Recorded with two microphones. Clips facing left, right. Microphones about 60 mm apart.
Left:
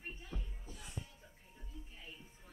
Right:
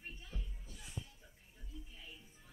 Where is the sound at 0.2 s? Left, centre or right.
Left.